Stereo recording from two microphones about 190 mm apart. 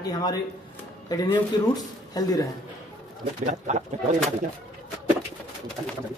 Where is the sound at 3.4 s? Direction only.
35° right (ahead or behind).